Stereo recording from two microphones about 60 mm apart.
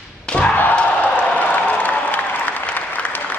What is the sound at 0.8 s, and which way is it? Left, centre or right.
Applause, left.